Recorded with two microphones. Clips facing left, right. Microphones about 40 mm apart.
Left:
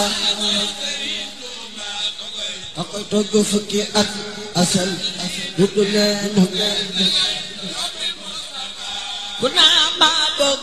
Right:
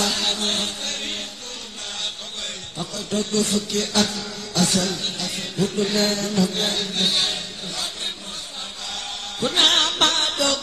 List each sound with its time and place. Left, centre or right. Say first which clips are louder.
0.0 s music: left 3 dB; left
2.8 s music: left 5 dB; left
9.4 s music: left 4 dB; left